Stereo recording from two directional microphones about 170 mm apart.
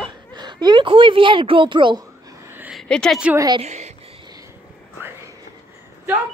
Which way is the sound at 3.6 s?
40° right (ahead or behind).